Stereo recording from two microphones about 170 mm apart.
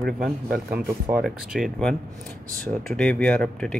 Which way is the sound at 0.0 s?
Centre (ahead or behind).